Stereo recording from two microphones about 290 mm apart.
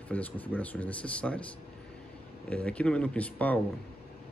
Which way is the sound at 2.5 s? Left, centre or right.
Centre.